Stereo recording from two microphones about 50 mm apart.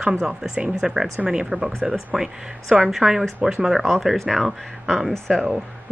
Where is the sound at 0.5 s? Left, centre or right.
Centre.